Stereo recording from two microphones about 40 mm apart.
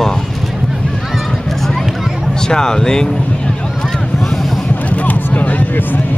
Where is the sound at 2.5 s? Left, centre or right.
Centre.